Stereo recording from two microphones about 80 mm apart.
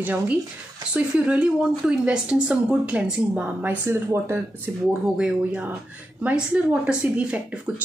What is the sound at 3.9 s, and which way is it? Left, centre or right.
Speech, right.